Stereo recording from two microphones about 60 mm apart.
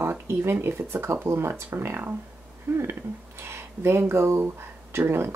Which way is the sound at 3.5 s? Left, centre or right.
Right.